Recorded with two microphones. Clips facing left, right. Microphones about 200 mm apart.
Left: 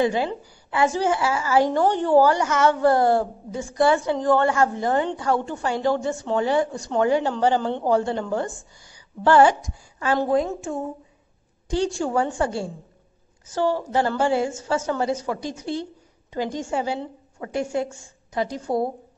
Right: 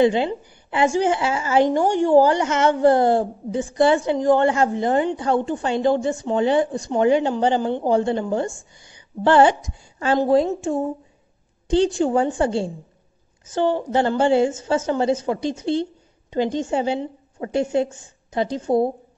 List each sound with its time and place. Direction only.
0.0 s a woman's voice: 20° right (ahead or behind)